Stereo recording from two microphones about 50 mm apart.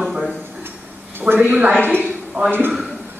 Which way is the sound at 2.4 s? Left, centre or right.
Right.